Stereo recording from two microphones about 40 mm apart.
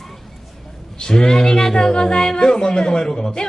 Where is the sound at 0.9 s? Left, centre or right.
Centre.